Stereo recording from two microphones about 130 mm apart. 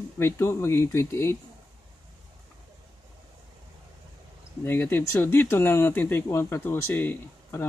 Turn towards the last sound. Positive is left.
turn(degrees=15)  # may be behind; listen again after turning